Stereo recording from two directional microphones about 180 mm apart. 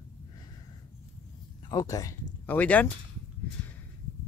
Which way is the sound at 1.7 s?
20° left (ahead or behind).